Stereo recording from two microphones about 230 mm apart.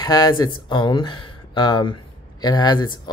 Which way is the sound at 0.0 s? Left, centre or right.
Centre.